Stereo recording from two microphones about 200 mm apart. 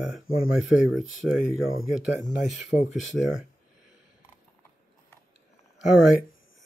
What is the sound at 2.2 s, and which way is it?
Speech, 35° left (ahead or behind).